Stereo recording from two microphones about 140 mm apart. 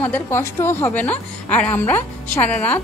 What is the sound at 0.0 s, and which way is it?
A woman's voice, 15° left (ahead or behind).